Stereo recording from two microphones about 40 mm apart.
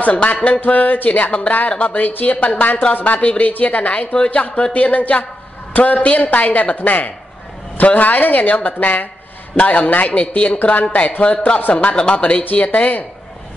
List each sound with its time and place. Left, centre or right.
0.0 s speech: left
0.7 s a woman's voice: left
1.7 s speech: left
2.0 s a woman's voice: left
2.2 s a woman's voice: left
11.0 s speech: left